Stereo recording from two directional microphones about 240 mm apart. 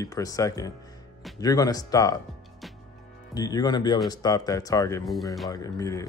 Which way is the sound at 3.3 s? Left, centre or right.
Centre.